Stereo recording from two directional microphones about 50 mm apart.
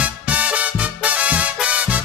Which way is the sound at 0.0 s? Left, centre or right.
Right.